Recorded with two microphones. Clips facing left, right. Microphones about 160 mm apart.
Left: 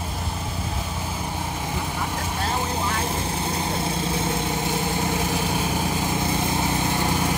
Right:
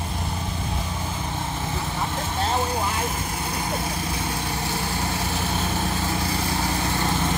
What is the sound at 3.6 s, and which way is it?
Vehicle, 25° left (ahead or behind).